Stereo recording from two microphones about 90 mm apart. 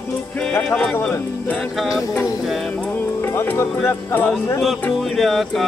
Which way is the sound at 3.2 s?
25° left (ahead or behind).